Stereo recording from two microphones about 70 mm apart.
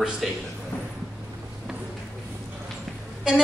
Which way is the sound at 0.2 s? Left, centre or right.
Centre.